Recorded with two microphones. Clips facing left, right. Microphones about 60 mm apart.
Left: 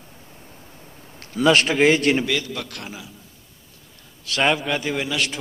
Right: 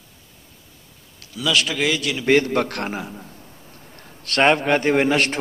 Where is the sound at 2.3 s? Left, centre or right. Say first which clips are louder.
Right 9 dB; right.